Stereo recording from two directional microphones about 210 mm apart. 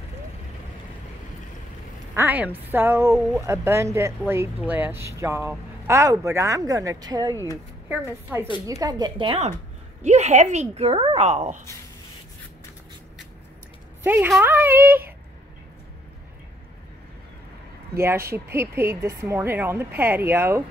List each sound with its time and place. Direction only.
2.1 s a woman's voice: 5° right (ahead or behind); by 11.6 s 30° right (ahead or behind)
14.0 s speech: 10° right (ahead or behind)
17.9 s speech: 10° right (ahead or behind)